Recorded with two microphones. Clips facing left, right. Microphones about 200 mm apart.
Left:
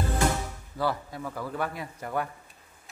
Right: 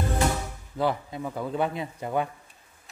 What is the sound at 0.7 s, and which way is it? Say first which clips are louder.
Speech: right 3 dB; 20° right (ahead or behind).